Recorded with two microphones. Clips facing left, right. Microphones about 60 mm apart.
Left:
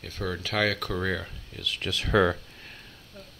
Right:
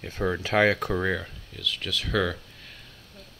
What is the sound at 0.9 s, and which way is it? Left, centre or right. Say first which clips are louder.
Speech: right 2 dB; centre.